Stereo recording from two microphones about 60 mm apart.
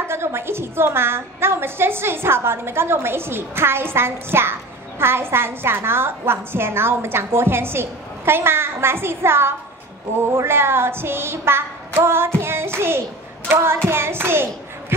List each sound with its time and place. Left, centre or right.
0.0 s a woman's voice: right
13.8 s hands: right